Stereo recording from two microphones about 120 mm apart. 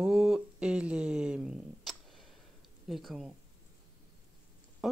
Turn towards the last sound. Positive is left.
turn(degrees=0)  # may be behind; listen again after turning